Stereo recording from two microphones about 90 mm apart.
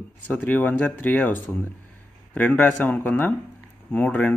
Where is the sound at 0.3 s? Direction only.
20° left (ahead or behind).